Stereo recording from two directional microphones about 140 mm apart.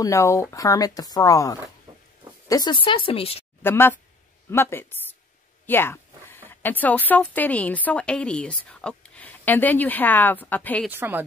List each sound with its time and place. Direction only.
0.0 s speech: 20° left (ahead or behind)
1.9 s a sound: 30° right (ahead or behind)
2.4 s speech: 25° left (ahead or behind)
3.6 s a woman's voice: 15° left (ahead or behind)
10.9 s a woman's voice: 15° right (ahead or behind)